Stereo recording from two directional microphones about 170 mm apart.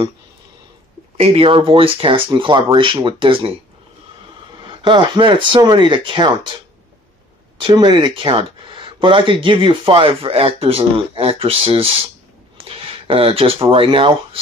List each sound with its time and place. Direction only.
1.1 s speech: 35° right (ahead or behind)
4.6 s speech: 25° right (ahead or behind)
7.6 s speech: 25° right (ahead or behind)